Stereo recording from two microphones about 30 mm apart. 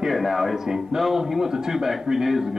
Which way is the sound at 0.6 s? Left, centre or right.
Centre.